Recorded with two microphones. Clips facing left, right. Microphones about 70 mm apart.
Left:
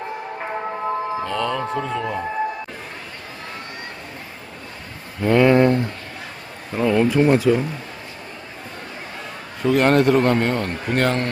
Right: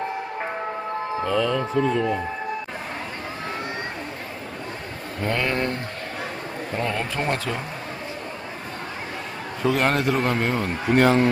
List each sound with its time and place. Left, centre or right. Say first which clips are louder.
1.2 s a man's voice: right 1 dB; centre
5.2 s speech: left 10 dB; centre
6.7 s a man's voice: left 10 dB; centre
9.6 s a man's voice: left 5 dB; centre